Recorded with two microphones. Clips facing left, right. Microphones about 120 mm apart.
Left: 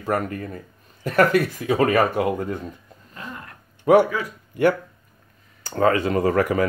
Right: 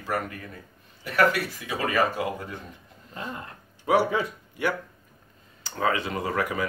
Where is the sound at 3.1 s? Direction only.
25° right (ahead or behind).